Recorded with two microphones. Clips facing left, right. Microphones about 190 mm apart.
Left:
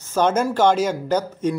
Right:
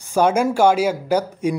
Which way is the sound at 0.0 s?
10° right (ahead or behind).